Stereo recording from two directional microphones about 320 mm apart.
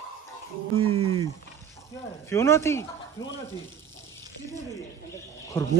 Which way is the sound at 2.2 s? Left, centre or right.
Centre.